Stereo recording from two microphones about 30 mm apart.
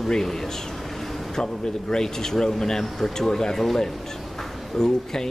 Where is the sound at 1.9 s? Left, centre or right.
Centre.